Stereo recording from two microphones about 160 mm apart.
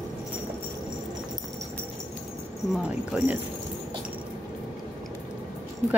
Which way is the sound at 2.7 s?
5° right (ahead or behind).